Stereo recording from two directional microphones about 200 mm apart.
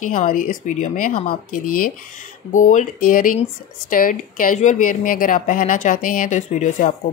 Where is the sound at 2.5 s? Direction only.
40° left (ahead or behind).